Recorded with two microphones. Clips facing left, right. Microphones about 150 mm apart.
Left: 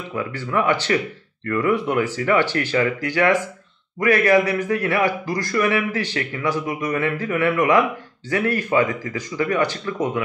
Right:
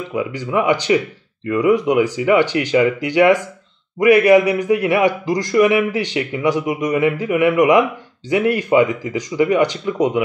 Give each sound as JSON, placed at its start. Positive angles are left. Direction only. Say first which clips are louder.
{"t": 0.1, "sound": "a man's voice", "louder": "right 3 dB", "side_deg": -15}